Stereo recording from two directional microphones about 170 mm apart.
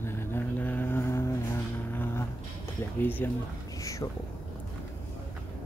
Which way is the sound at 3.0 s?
10° left (ahead or behind).